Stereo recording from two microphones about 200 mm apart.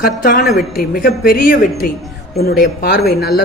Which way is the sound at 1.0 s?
50° left (ahead or behind).